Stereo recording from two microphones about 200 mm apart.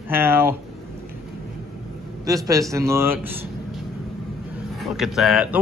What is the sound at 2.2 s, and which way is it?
Speech, 15° right (ahead or behind).